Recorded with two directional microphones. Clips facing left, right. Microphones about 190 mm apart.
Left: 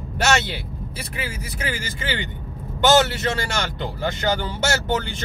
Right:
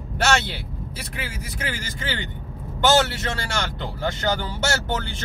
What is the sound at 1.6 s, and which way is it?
Speech, 15° left (ahead or behind).